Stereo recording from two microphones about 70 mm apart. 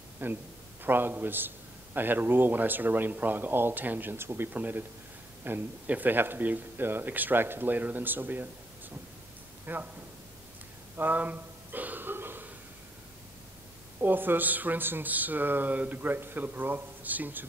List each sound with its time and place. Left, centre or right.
0.2 s speech: right
9.7 s speech: right
11.0 s a sound: right
14.0 s speech: right